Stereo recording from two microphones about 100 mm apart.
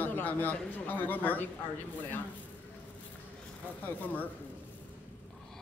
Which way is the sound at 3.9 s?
15° left (ahead or behind).